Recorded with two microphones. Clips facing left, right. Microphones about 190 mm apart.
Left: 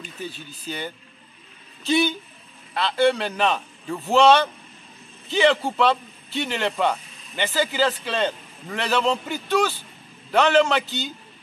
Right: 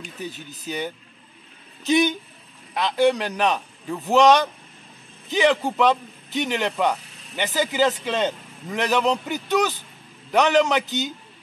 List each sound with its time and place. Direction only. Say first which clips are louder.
0.0 s a man's voice: right 1 dB; 15° right (ahead or behind)